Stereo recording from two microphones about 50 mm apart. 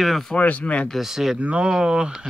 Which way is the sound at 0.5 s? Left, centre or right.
Left.